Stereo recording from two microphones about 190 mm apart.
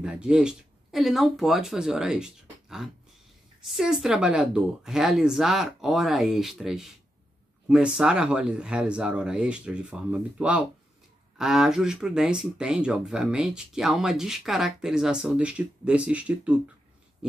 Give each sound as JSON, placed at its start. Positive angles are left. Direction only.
{"t": 0.0, "sound": "speech", "side_deg": -5}